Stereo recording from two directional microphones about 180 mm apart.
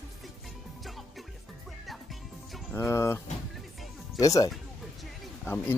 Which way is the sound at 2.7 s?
15° left (ahead or behind).